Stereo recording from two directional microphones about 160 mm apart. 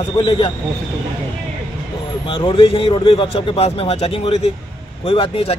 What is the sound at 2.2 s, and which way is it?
A man's voice, 30° left (ahead or behind).